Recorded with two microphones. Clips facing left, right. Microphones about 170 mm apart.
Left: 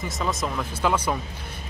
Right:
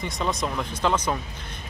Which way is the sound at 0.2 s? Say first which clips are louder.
Even; centre (ahead or behind).